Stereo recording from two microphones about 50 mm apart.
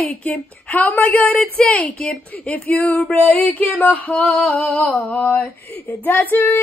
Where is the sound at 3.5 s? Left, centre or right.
Left.